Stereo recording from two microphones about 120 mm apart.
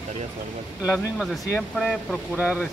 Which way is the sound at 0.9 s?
Centre (ahead or behind).